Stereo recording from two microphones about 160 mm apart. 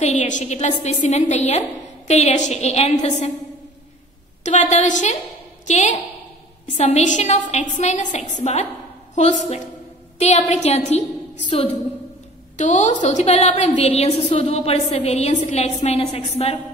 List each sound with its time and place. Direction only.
0.0 s a woman's voice: 45° left (ahead or behind)
4.4 s a woman's voice: 45° left (ahead or behind)
12.5 s a woman's voice: 50° left (ahead or behind)